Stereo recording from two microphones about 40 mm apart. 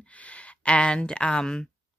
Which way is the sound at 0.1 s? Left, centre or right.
Left.